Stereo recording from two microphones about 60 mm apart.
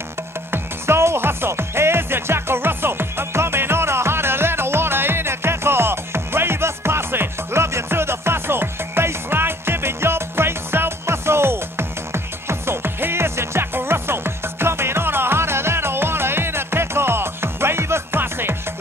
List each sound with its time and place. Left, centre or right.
0.5 s music: right